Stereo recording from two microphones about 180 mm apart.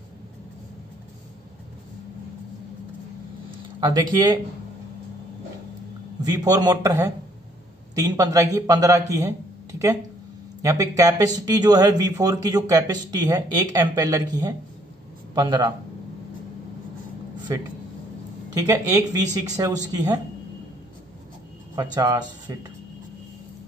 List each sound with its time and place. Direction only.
3.8 s speech: 25° right (ahead or behind)
6.2 s a man's voice: 20° right (ahead or behind)
18.5 s speech: 20° right (ahead or behind)
21.7 s speech: 20° right (ahead or behind)